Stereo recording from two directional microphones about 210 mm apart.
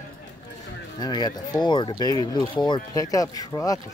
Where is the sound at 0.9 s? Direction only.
20° left (ahead or behind).